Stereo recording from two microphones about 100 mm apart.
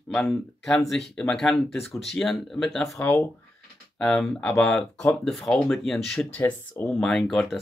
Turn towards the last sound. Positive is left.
turn(degrees=5)  # may be behind; listen again after turning